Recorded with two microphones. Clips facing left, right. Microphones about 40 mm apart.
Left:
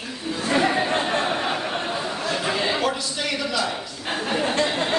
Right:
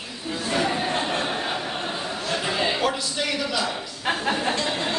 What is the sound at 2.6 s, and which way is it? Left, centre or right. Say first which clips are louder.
A man's voice: even; centre.